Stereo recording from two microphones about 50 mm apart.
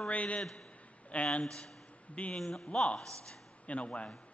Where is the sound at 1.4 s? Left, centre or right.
Centre.